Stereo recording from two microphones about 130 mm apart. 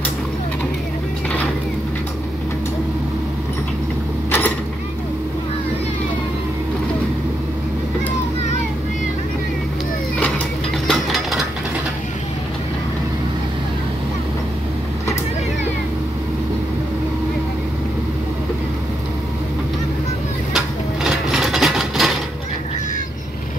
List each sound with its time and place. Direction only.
4.3 s creak: 15° left (ahead or behind)
10.9 s ratchet: centre (ahead or behind)
20.5 s a sound: centre (ahead or behind)